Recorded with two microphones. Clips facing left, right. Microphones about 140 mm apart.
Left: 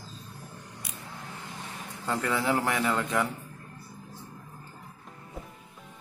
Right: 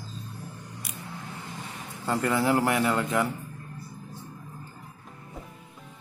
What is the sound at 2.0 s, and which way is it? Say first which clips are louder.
A man's voice: right 3 dB; 10° right (ahead or behind).